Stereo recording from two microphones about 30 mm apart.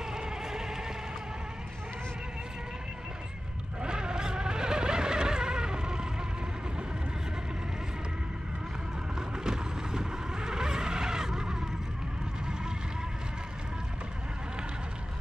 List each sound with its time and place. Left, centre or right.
0.1 s a sound: centre
3.8 s vehicle: right
9.4 s vehicle: right